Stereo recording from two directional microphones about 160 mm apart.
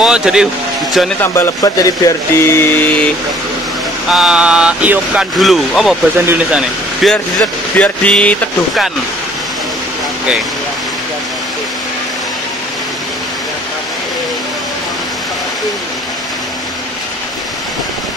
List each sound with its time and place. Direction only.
0.0 s speech: 5° right (ahead or behind)
1.2 s speech: 15° left (ahead or behind)
4.1 s speech: 5° right (ahead or behind)